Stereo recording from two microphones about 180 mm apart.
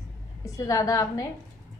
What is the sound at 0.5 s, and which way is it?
Speech, 20° left (ahead or behind).